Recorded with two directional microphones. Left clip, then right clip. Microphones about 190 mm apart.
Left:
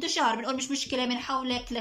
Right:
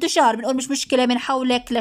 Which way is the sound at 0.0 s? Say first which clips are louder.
Right 9 dB; 45° right (ahead or behind).